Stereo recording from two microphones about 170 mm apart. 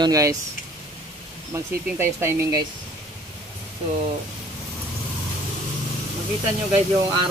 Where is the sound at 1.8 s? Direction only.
15° right (ahead or behind).